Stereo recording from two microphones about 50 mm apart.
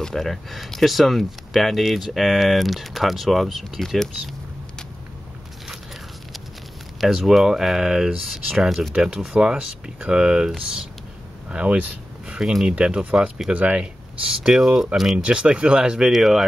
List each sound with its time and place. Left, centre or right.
0.0 s speech: centre
7.0 s speech: centre
11.5 s speech: centre
13.5 s speech: right
14.2 s speech: centre
15.1 s speech: right
16.1 s speech: centre